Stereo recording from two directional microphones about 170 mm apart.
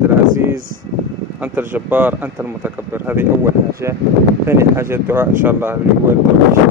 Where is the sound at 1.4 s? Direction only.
10° right (ahead or behind).